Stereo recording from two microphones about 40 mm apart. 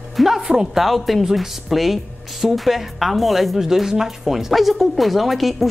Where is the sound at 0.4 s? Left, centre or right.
Centre.